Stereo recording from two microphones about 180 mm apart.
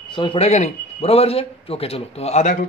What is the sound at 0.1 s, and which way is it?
A man's voice, 25° left (ahead or behind).